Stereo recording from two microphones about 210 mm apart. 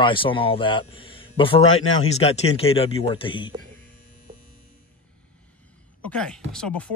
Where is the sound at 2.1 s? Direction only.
30° left (ahead or behind).